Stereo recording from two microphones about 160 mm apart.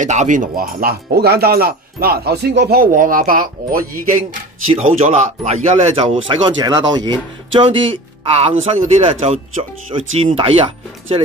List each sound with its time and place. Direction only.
0.0 s speech: 50° right (ahead or behind)
4.7 s speech: 45° right (ahead or behind)